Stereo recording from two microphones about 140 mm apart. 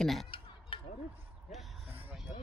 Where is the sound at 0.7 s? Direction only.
40° left (ahead or behind).